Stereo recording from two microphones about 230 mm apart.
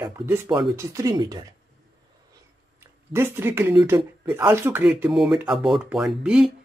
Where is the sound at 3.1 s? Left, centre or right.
Centre.